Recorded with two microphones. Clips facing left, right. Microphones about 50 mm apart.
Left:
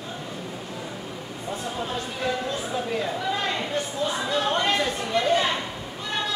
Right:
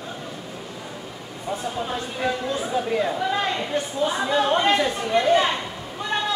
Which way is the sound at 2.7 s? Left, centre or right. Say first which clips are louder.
Right 5 dB; centre.